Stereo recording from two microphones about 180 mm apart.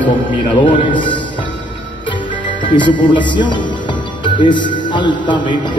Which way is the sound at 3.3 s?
25° left (ahead or behind).